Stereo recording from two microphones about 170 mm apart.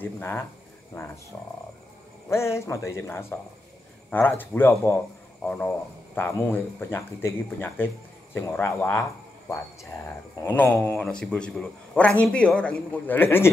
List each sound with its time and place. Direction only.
0.0 s speech: 10° left (ahead or behind)
2.2 s speech: 15° left (ahead or behind)
10.0 s speech: 10° left (ahead or behind)